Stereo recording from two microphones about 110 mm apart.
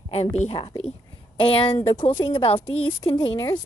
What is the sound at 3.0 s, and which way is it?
Speech, 45° left (ahead or behind).